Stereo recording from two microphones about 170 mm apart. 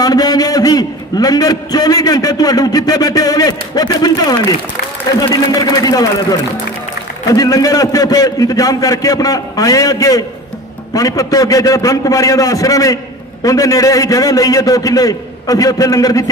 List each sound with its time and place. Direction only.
0.0 s a man's voice: 20° left (ahead or behind)